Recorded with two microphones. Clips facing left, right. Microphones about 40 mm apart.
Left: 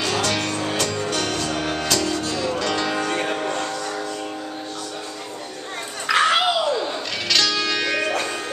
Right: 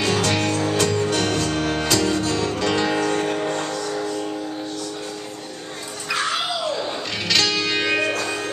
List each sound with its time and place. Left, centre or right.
0.0 s music: right
2.6 s music: centre
3.0 s music: left
3.3 s music: centre
6.1 s music: left
7.2 s music: right
8.0 s music: left